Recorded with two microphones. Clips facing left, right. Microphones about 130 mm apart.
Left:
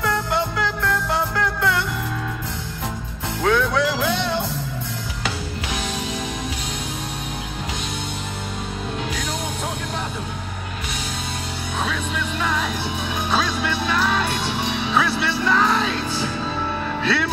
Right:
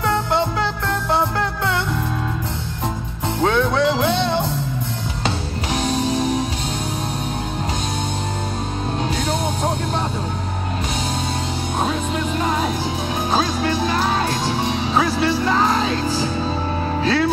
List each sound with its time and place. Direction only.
3.4 s music: 25° right (ahead or behind)
11.8 s music: 40° right (ahead or behind)